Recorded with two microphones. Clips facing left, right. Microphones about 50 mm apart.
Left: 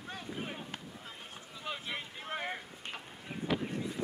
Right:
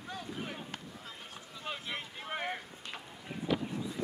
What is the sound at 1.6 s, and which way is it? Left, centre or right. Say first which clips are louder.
Boat: even; centre.